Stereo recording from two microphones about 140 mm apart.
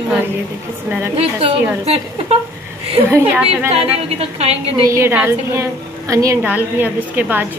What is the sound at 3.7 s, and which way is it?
Speech, 45° right (ahead or behind).